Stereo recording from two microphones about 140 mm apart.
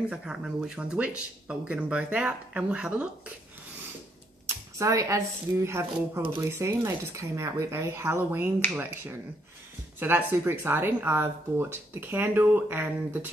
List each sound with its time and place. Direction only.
0.1 s speech: 5° right (ahead or behind)
4.7 s speech: 20° right (ahead or behind)
9.9 s speech: 15° right (ahead or behind)